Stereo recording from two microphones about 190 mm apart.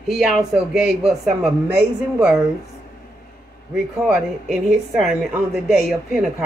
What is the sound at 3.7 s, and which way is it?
A woman's voice, 5° right (ahead or behind).